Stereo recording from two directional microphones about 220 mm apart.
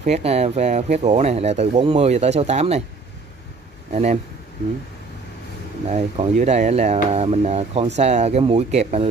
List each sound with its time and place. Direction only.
0.0 s speech: 30° right (ahead or behind)
3.9 s speech: 35° right (ahead or behind)
5.9 s speech: 30° right (ahead or behind)